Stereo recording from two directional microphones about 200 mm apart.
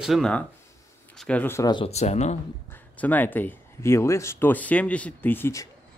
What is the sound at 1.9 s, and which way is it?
Speech, 35° left (ahead or behind).